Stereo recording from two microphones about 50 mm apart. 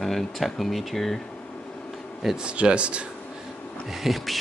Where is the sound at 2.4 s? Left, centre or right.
Centre.